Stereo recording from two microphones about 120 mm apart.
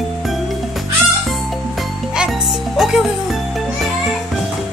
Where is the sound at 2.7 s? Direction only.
Centre (ahead or behind).